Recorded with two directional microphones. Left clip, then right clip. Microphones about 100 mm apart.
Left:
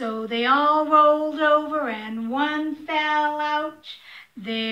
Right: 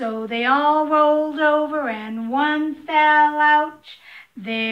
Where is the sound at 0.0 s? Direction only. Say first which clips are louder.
Right 2 dB; 40° right (ahead or behind).